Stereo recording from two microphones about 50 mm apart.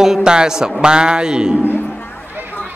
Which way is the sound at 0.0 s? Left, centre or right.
Centre.